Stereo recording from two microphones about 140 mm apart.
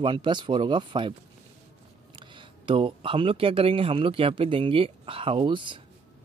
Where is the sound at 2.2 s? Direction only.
35° right (ahead or behind).